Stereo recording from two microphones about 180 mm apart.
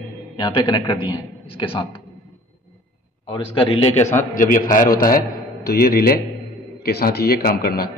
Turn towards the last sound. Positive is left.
turn(degrees=55)  # may be behind; listen again after turning